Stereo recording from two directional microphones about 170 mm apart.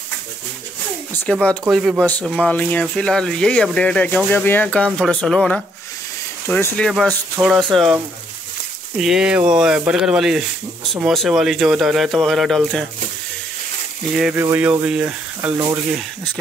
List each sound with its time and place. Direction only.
1.2 s speech: 5° left (ahead or behind)
14.1 s speech: 5° right (ahead or behind)